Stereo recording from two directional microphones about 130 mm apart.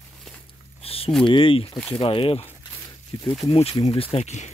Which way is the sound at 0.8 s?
45° left (ahead or behind).